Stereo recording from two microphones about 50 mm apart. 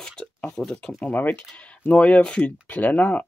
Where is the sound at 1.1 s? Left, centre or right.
Left.